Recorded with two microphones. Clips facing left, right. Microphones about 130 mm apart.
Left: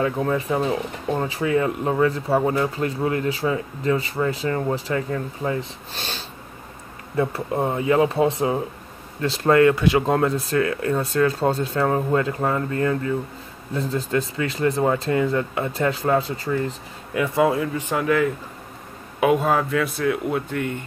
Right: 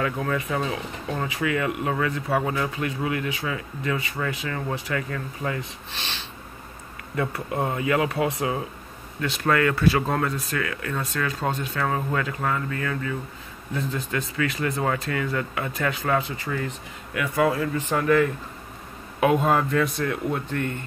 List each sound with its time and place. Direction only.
0.0 s speech: 30° left (ahead or behind)
5.9 s speech: 40° left (ahead or behind)
7.2 s speech: 30° left (ahead or behind)
17.7 s a man's voice: 10° left (ahead or behind)